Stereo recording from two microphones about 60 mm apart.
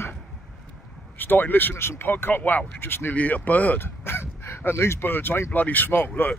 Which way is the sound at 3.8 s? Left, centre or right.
Left.